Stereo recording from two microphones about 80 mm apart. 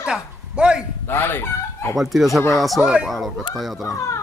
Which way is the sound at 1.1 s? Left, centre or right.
Left.